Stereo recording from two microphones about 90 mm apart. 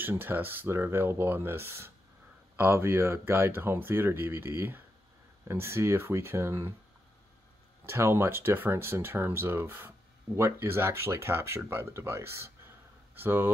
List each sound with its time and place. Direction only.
0.0 s speech: 20° right (ahead or behind)
7.8 s speech: 30° right (ahead or behind)